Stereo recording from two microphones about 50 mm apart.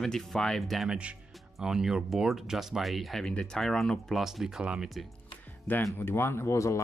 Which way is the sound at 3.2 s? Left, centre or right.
Centre.